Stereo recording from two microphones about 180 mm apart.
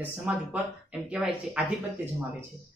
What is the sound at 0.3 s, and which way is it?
A woman's voice, 10° right (ahead or behind).